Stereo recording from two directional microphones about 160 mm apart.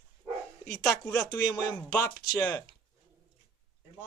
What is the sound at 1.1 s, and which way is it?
Speech, 25° left (ahead or behind).